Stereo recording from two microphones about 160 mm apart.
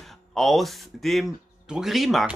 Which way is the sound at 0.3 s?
Centre (ahead or behind).